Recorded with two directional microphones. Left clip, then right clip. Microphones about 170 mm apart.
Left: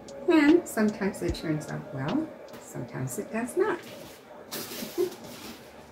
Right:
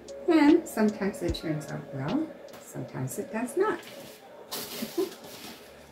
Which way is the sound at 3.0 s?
25° right (ahead or behind).